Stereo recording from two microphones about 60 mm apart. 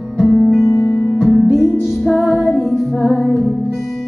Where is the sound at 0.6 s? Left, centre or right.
Left.